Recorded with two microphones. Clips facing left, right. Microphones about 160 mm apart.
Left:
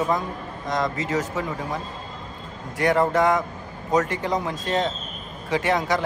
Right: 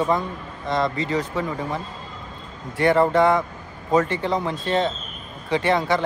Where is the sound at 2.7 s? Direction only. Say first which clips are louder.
Right 3 dB; centre (ahead or behind).